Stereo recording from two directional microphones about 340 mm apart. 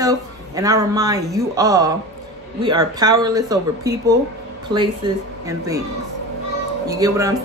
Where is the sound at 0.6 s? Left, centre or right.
Centre.